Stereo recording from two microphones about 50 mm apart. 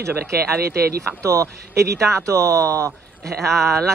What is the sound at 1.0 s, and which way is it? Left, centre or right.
Speech, right.